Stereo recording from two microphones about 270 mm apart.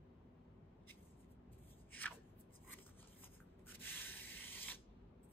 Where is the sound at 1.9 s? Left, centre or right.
Centre.